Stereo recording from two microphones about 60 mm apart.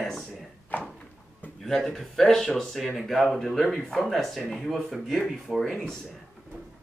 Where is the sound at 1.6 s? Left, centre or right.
Centre.